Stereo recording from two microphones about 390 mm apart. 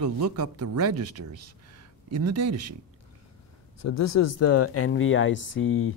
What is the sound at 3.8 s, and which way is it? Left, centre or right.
Speech, left.